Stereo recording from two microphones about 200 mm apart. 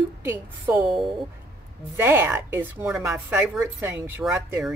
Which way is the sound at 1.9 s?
10° right (ahead or behind).